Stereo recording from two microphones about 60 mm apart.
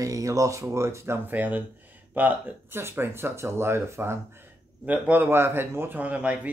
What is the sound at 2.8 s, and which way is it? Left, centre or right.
Speech, right.